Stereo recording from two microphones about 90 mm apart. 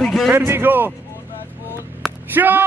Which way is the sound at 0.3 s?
25° right (ahead or behind).